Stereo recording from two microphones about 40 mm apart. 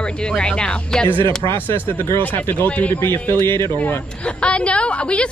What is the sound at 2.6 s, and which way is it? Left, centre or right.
Speech, left.